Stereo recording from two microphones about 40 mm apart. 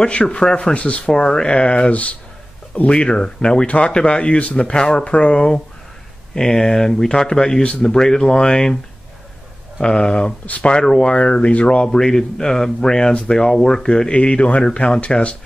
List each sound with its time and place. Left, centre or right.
0.0 s speech: left
1.9 s speech: left; by 8.7 s centre
9.8 s speech: centre
10.4 s speech: left
10.7 s speech: centre
11.1 s speech: left